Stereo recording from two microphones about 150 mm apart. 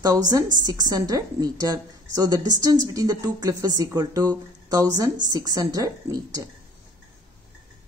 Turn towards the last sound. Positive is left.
turn(degrees=-25)  # may be behind; listen again after turning